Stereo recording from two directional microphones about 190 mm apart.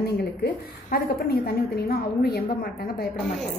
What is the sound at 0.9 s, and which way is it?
A woman's voice, 50° left (ahead or behind).